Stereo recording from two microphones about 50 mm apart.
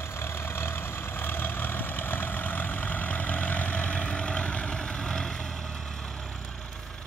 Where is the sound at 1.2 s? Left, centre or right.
Left; by 5.3 s centre.